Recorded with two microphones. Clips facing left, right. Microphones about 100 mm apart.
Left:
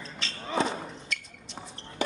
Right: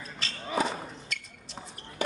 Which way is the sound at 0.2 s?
Centre (ahead or behind).